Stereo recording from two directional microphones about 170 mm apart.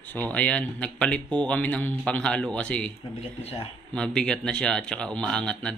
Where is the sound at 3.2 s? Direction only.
35° left (ahead or behind).